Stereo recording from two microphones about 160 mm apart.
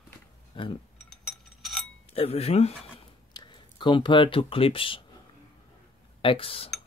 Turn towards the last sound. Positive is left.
turn(degrees=35)  # may be behind; listen again after turning